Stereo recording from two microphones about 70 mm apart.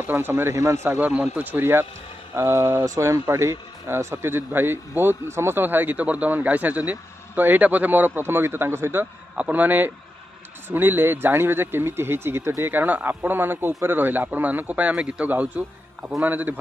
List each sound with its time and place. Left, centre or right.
0.0 s speech: right
0.9 s a man's voice: right
9.3 s a man's voice: right